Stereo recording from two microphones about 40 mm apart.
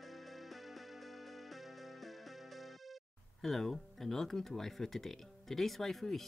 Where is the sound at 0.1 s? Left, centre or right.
Centre.